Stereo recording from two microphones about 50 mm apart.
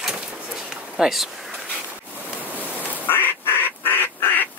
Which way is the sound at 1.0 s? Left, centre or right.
Centre.